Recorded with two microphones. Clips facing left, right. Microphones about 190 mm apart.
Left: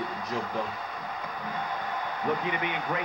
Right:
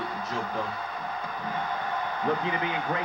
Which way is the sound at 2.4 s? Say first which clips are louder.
Right 2 dB; 30° right (ahead or behind).